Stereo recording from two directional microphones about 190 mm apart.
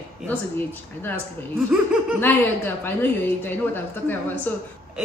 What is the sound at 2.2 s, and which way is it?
A woman's voice, 10° left (ahead or behind).